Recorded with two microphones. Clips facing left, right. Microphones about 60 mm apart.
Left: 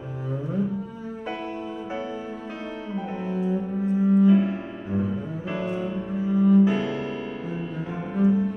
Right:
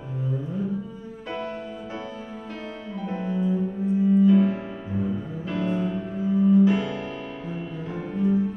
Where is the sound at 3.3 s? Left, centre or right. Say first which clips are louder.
Even; left.